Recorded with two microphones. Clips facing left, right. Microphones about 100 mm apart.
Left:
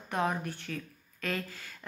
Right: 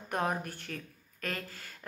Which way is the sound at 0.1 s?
45° right (ahead or behind).